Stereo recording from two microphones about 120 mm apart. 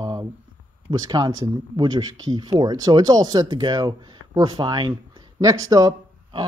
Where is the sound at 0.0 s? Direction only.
30° right (ahead or behind).